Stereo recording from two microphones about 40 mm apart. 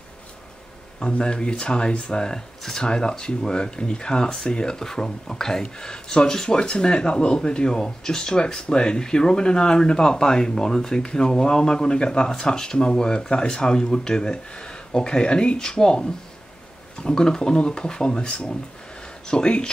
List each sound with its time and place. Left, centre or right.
1.0 s speech: left